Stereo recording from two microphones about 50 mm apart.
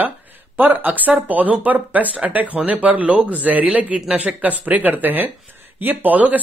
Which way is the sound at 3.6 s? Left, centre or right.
Right.